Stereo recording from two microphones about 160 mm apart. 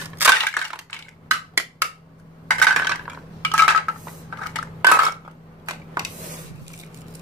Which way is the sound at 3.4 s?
10° left (ahead or behind).